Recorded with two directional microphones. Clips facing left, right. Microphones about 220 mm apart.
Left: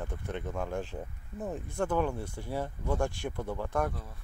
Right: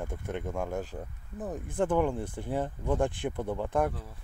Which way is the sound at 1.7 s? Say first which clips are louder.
Right 4 dB; 15° right (ahead or behind).